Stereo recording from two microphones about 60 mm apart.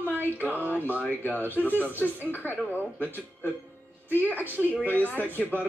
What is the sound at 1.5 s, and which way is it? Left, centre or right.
Speech, left.